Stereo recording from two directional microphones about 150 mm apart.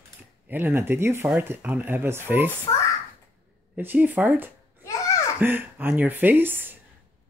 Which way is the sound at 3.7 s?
10° right (ahead or behind).